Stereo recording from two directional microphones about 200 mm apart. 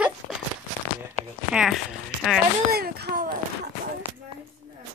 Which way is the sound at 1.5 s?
Centre (ahead or behind).